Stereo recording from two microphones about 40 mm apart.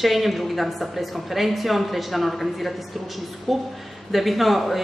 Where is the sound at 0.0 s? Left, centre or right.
Centre.